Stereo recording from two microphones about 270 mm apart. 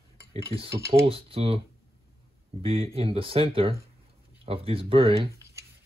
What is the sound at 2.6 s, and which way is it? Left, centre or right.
Speech, right.